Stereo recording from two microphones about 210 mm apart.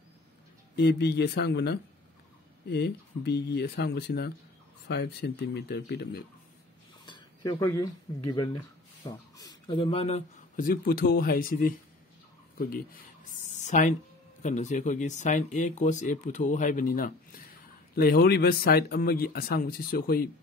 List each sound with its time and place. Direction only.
0.7 s speech: 50° left (ahead or behind)
7.1 s speech: 20° left (ahead or behind); by 13.0 s 45° left (ahead or behind)
13.5 s a sound: 35° left (ahead or behind)
14.4 s speech: 35° left (ahead or behind)